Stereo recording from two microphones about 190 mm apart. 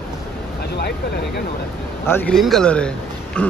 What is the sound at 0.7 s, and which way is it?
Speech, 60° left (ahead or behind).